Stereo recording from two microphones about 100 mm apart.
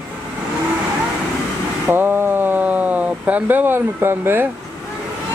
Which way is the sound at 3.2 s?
15° right (ahead or behind).